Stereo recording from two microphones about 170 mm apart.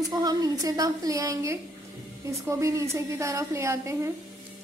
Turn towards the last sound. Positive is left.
turn(degrees=-15)  # may be behind; listen again after turning